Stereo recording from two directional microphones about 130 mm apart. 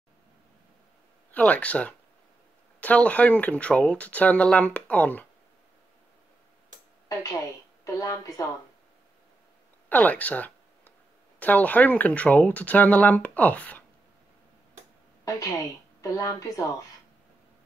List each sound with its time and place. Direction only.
1.3 s speech: 10° left (ahead or behind)
7.8 s speech: 25° left (ahead or behind)
9.8 s a sound: 10° left (ahead or behind)
11.3 s speech: 10° left (ahead or behind)
15.2 s a woman's voice: 25° left (ahead or behind)